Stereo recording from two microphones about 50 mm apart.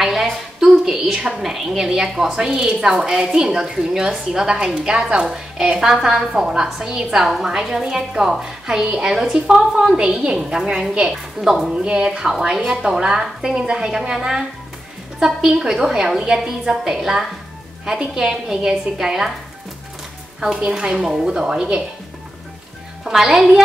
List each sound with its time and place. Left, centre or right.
0.0 s a sound: centre
1.4 s a woman's voice: centre
20.3 s a woman's voice: centre
23.0 s a woman's voice: centre